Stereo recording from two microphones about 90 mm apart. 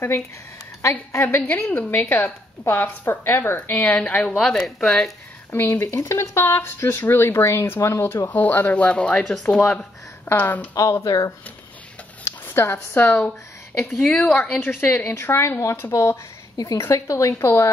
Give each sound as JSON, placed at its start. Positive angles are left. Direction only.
{"t": 0.8, "sound": "a woman's voice", "side_deg": 30}
{"t": 4.3, "sound": "speech", "side_deg": 5}
{"t": 5.5, "sound": "a woman's voice", "side_deg": 25}
{"t": 8.3, "sound": "speech", "side_deg": 20}
{"t": 10.2, "sound": "a woman's voice", "side_deg": 25}
{"t": 11.1, "sound": "a woman's voice", "side_deg": 40}
{"t": 12.3, "sound": "speech", "side_deg": 25}
{"t": 13.8, "sound": "a woman's voice", "side_deg": 5}